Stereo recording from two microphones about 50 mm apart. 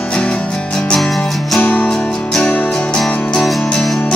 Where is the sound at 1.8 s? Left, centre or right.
Centre.